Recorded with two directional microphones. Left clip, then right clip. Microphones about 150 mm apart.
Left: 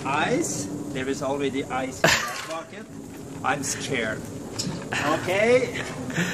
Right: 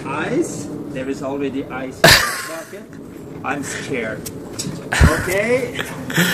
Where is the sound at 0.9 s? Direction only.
15° left (ahead or behind).